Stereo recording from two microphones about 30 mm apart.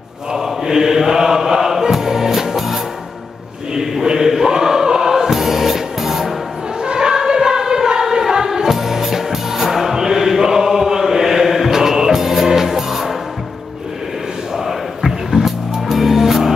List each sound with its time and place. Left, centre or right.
0.4 s music: centre
3.7 s a sound: centre
4.1 s chant: centre
5.1 s music: centre
6.8 s a sound: right
7.2 s music: right
14.6 s music: centre